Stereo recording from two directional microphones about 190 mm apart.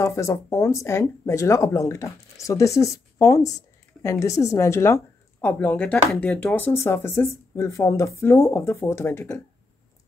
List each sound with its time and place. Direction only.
0.0 s speech: 15° left (ahead or behind)